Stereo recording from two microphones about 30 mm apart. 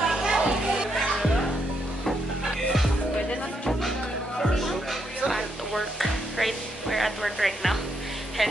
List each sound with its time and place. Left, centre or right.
0.0 s music: centre
0.9 s music: centre
4.4 s music: centre
8.4 s a sound: centre